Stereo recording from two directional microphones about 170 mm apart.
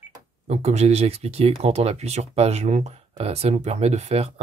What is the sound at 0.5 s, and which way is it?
Speech, 40° right (ahead or behind).